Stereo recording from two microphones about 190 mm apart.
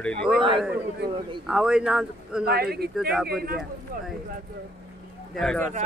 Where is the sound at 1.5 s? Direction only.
5° right (ahead or behind).